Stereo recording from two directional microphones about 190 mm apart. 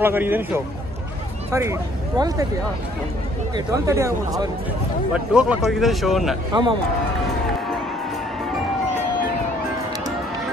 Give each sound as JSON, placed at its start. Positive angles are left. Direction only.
{"t": 0.0, "sound": "speech", "side_deg": -10}
{"t": 3.5, "sound": "speech", "side_deg": -15}
{"t": 5.1, "sound": "a man's voice", "side_deg": -5}
{"t": 6.5, "sound": "a man's voice", "side_deg": -25}